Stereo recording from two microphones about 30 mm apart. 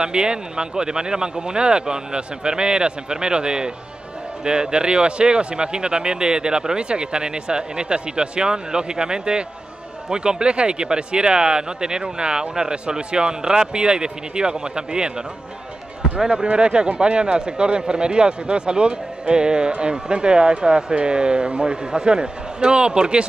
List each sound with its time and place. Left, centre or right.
0.0 s speech: right
16.4 s speech: right